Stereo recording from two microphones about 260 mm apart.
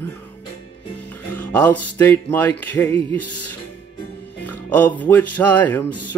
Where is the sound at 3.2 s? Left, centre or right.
Left.